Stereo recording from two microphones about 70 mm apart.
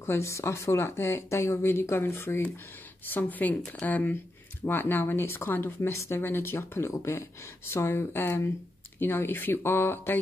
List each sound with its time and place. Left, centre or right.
0.0 s speech: left
3.1 s speech: left